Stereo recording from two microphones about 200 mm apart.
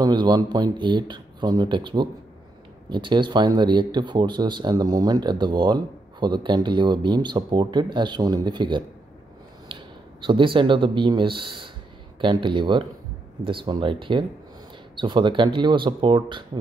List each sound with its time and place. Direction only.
0.0 s speech: 20° right (ahead or behind)
10.2 s speech: 25° right (ahead or behind)